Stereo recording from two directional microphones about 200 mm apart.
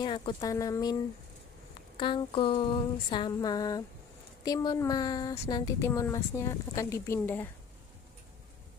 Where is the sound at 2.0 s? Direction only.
25° left (ahead or behind).